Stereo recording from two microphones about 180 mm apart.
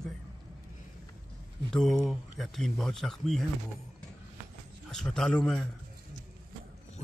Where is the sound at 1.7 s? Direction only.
Centre (ahead or behind).